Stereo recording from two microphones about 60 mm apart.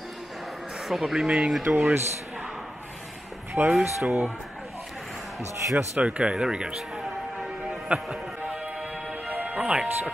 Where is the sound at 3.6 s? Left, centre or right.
Right.